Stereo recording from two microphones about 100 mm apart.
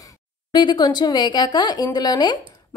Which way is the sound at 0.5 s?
50° left (ahead or behind).